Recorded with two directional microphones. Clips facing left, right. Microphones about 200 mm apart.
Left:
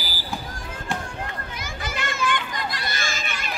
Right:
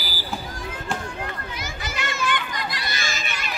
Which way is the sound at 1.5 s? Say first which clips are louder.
Even; 50° left (ahead or behind).